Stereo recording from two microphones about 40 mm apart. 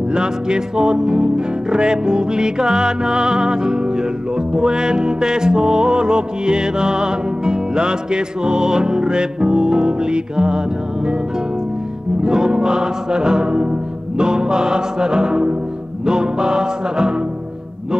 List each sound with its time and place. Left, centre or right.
0.1 s music: right
12.2 s music: centre